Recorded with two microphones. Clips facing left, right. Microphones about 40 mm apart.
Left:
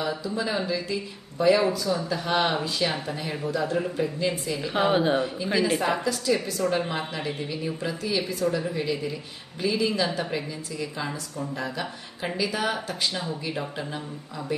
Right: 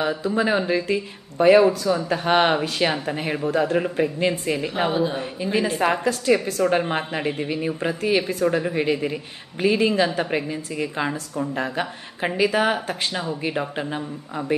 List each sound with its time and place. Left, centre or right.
0.2 s a woman's voice: right
4.9 s speech: left
5.2 s a woman's voice: right